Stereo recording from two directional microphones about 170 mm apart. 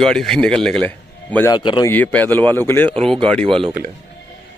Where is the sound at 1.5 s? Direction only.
25° left (ahead or behind).